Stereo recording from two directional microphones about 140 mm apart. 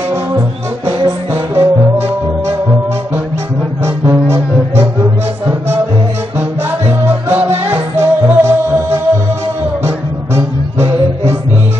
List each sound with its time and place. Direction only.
1.0 s music: 15° right (ahead or behind)
3.8 s music: 20° right (ahead or behind)
6.9 s music: 15° right (ahead or behind)